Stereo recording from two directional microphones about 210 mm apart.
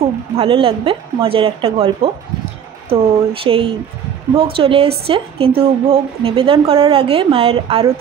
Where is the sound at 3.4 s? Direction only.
25° right (ahead or behind).